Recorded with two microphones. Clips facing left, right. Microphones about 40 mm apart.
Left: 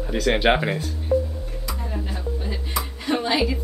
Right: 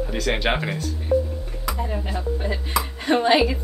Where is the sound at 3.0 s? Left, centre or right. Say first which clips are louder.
Right 4 dB; right.